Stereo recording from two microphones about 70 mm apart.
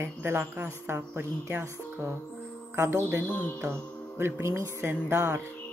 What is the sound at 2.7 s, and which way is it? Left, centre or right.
Music, right.